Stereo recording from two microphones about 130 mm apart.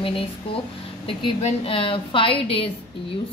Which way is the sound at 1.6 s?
40° left (ahead or behind).